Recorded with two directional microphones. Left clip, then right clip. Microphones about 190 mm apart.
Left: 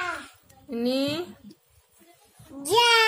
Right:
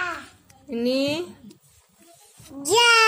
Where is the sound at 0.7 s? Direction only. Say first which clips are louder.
Right 3 dB; 10° right (ahead or behind).